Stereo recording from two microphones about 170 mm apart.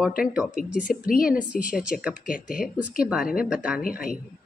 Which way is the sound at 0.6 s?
55° left (ahead or behind).